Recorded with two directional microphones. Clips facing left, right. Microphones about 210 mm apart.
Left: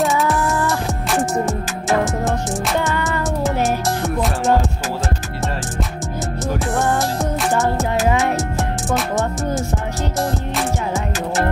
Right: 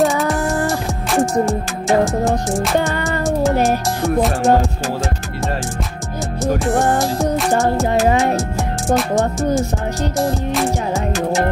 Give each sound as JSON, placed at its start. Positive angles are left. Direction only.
{"t": 0.0, "sound": "music", "side_deg": 0}
{"t": 2.9, "sound": "music", "side_deg": -30}
{"t": 3.6, "sound": "music", "side_deg": 0}
{"t": 6.7, "sound": "music", "side_deg": -35}
{"t": 8.4, "sound": "music", "side_deg": 0}